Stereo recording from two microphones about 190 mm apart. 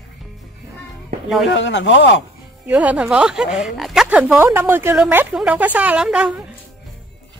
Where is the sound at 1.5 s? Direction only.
75° left (ahead or behind).